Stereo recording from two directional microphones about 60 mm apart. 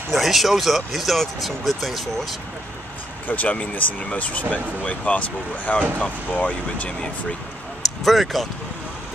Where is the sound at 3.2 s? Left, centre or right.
Left.